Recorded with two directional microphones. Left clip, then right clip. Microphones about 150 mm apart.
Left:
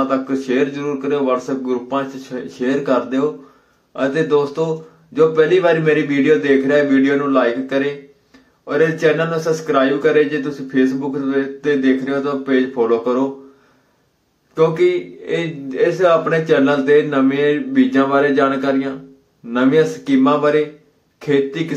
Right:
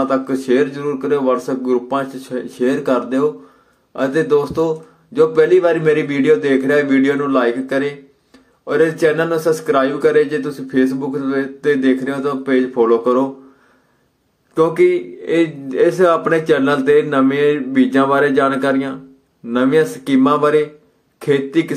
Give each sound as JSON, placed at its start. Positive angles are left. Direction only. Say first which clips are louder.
{"t": 0.0, "sound": "a man's voice", "louder": "right 1 dB", "side_deg": -30}
{"t": 14.5, "sound": "a man's voice", "louder": "right 1 dB", "side_deg": -30}